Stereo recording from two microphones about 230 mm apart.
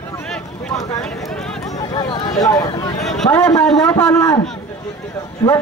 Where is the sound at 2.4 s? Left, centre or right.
Centre.